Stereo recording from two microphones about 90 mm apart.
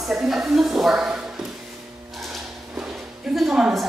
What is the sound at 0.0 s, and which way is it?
A woman's voice, 5° right (ahead or behind).